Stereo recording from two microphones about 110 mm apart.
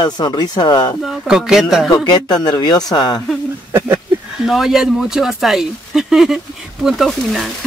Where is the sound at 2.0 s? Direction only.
40° left (ahead or behind).